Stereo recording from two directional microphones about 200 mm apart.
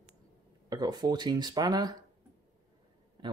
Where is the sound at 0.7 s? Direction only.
20° right (ahead or behind).